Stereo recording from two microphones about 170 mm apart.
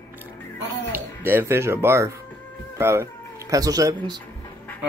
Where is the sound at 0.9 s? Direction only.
10° right (ahead or behind).